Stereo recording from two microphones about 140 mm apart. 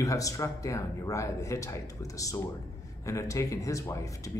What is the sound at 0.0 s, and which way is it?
Speech, 25° left (ahead or behind).